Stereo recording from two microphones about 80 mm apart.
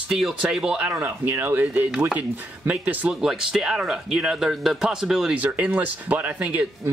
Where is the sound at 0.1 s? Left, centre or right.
Centre.